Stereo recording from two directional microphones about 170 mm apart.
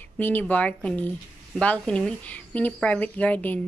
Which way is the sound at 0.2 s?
10° left (ahead or behind).